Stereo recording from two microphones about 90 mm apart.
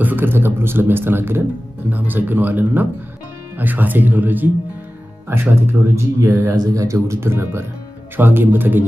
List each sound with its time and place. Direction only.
0.0 s speech: 25° right (ahead or behind)